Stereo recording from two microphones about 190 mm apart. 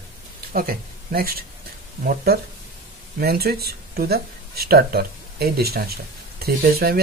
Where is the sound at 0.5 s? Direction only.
50° right (ahead or behind).